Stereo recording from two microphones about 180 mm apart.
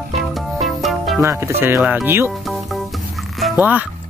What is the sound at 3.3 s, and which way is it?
Music, 5° right (ahead or behind).